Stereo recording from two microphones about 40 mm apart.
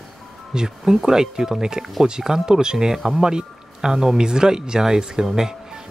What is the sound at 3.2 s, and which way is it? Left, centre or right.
Speech, centre.